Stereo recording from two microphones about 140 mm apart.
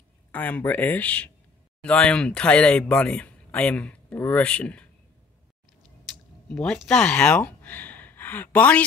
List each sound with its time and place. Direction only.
0.3 s speech: 10° left (ahead or behind)
6.5 s speech: 5° left (ahead or behind)